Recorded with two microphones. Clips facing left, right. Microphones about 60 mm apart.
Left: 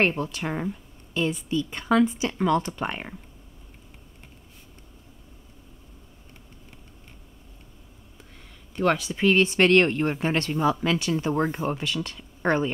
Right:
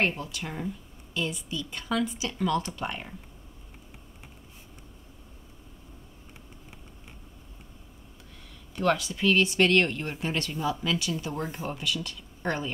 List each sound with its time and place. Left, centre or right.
0.0 s a woman's voice: left
8.7 s a woman's voice: left